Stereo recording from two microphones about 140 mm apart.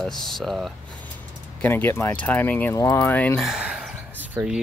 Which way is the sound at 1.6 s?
15° left (ahead or behind).